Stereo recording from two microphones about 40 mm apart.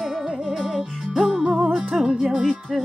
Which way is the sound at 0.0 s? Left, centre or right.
Centre.